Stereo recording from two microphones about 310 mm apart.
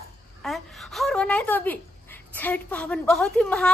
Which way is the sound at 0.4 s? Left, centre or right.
Centre.